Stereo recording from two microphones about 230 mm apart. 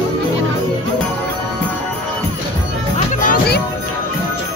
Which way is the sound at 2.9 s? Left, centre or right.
Left.